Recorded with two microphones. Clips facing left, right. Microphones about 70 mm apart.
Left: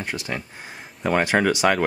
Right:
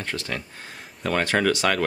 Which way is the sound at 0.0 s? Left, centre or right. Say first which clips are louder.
Left 1 dB; centre.